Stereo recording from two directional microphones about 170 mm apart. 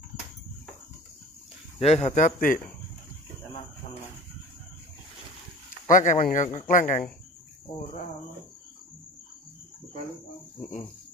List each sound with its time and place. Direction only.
1.8 s speech: 40° left (ahead or behind)
5.9 s speech: 55° left (ahead or behind)